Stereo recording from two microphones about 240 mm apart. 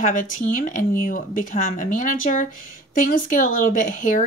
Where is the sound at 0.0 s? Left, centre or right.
Left.